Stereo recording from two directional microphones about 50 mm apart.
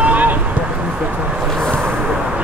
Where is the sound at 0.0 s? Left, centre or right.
Right.